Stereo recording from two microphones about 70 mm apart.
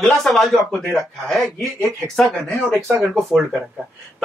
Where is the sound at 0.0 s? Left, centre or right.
Centre.